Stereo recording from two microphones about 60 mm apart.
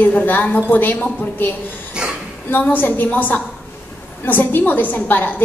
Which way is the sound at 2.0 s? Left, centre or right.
Centre.